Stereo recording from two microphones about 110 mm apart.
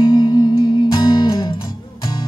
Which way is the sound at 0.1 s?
40° left (ahead or behind).